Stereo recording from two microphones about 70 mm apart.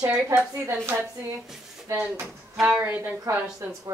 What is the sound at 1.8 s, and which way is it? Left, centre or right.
Speech, right.